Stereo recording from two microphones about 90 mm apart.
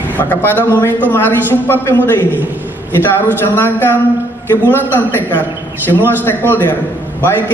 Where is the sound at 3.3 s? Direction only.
20° left (ahead or behind).